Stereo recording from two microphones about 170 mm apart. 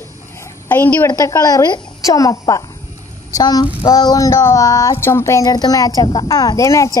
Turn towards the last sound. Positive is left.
turn(degrees=20)  # may be behind; listen again after turning